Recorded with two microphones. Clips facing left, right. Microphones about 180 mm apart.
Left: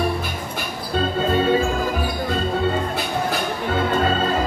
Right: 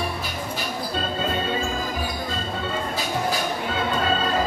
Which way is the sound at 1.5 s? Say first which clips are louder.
Left 7 dB; 60° left (ahead or behind).